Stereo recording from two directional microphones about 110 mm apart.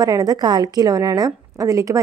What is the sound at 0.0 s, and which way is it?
Speech, 35° right (ahead or behind).